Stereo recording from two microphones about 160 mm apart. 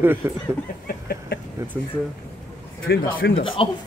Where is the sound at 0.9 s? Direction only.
75° left (ahead or behind).